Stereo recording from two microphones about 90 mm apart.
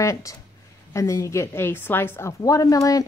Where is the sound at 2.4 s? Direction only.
40° left (ahead or behind).